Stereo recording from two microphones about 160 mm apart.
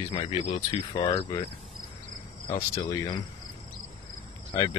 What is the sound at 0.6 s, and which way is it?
Speech, 25° left (ahead or behind).